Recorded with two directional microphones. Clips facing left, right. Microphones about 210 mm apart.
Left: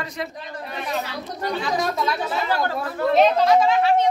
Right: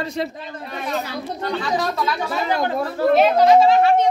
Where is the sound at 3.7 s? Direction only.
50° right (ahead or behind).